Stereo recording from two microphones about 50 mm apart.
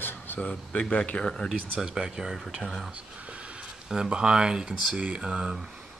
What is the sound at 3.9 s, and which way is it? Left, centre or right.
Speech, centre.